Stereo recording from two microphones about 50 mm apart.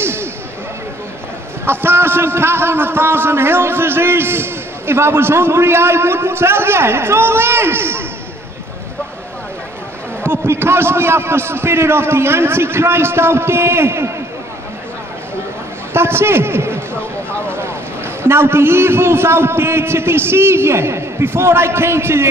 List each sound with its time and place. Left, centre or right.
0.0 s a sound: right
1.7 s a man's voice: right
10.2 s a man's voice: right
15.9 s a man's voice: right
18.2 s a man's voice: right